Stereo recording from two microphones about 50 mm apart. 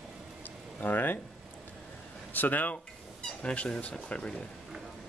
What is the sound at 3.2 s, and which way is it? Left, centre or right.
Speech, left.